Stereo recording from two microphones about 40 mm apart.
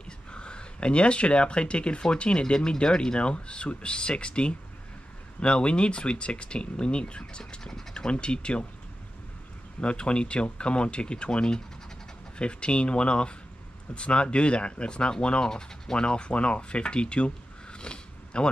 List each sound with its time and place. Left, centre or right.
0.0 s speech: left
9.8 s speech: left